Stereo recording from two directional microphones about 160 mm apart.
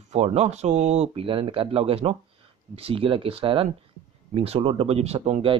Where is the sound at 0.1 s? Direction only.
40° right (ahead or behind).